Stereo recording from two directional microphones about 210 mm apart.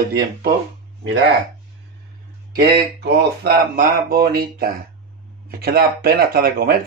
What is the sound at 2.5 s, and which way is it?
Speech, 50° right (ahead or behind).